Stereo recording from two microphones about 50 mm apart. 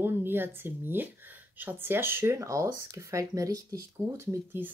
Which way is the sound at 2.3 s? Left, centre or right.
Right.